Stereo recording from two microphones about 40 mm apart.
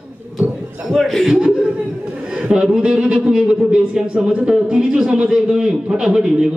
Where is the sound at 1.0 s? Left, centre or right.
Centre.